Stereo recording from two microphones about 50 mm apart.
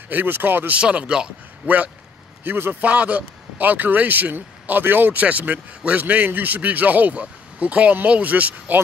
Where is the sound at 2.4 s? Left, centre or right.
Right.